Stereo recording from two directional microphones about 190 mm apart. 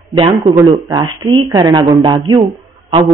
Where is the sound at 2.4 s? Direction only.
35° right (ahead or behind).